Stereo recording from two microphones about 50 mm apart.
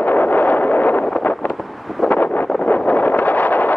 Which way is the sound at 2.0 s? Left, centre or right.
Left.